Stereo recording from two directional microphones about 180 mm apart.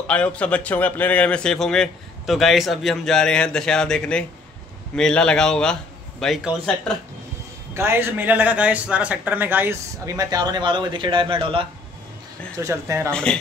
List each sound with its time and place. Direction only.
0.0 s a man's voice: 5° left (ahead or behind)
7.7 s speech: 15° right (ahead or behind); by 11.6 s 30° right (ahead or behind)
12.5 s speech: 15° right (ahead or behind)
13.1 s a man's voice: 5° left (ahead or behind)